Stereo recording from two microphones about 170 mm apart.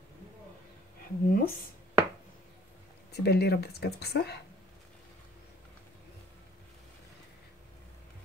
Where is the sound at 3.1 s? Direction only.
70° left (ahead or behind).